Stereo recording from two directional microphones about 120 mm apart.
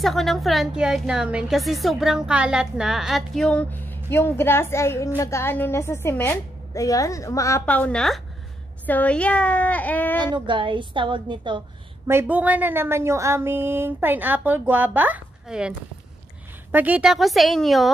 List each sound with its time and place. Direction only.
0.0 s a woman's voice: centre (ahead or behind); by 7.6 s 25° left (ahead or behind)
7.6 s a woman's voice: 10° left (ahead or behind)
10.1 s a woman's voice: 40° right (ahead or behind)
12.1 s a woman's voice: 15° right (ahead or behind)
16.7 s speech: 15° right (ahead or behind)